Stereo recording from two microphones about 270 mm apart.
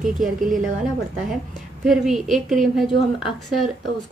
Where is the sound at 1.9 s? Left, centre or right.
Centre.